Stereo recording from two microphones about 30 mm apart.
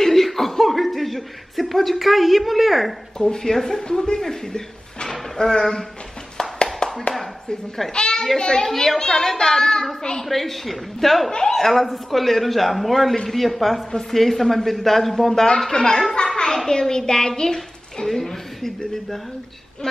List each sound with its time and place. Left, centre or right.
0.0 s chuckle: centre
3.2 s a child's voice: left
6.6 s a sound: left
7.9 s a child's voice: left
8.6 s speech: centre
9.0 s a child's voice: left
10.2 s a man's voice: centre; by 17.3 s left
17.4 s a sound: left
18.0 s a woman's voice: centre